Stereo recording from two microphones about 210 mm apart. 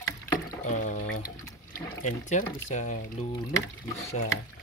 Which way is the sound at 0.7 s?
35° left (ahead or behind).